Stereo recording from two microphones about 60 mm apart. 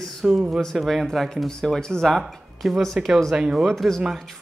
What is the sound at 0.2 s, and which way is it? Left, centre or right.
Speech, centre.